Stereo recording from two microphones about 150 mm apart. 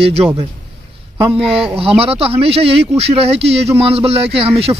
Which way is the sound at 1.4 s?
40° right (ahead or behind).